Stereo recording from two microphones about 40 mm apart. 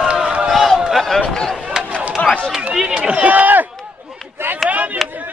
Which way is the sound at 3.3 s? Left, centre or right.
Right.